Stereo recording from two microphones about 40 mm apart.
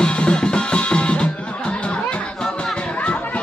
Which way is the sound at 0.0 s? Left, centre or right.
Left.